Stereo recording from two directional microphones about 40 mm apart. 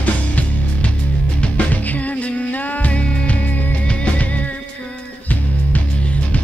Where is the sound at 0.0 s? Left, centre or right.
Left.